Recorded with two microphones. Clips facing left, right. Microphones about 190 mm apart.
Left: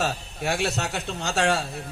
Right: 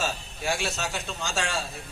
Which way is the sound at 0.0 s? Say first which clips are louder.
Left 3 dB; 60° left (ahead or behind).